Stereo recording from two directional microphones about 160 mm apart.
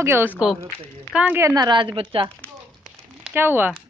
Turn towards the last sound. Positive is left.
turn(degrees=-15)  # may be behind; listen again after turning